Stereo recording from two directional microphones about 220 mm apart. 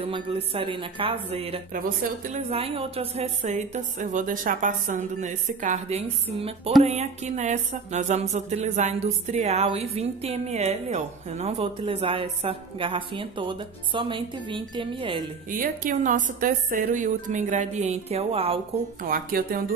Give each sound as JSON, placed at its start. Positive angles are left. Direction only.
{"t": 0.0, "sound": "music", "side_deg": -25}
{"t": 2.3, "sound": "a woman's voice", "side_deg": -25}
{"t": 6.8, "sound": "music", "side_deg": -30}
{"t": 15.5, "sound": "a woman's voice", "side_deg": -35}
{"t": 19.0, "sound": "a woman's voice", "side_deg": -40}